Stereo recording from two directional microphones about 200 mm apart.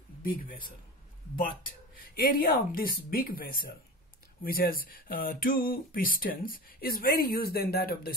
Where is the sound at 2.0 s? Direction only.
45° left (ahead or behind).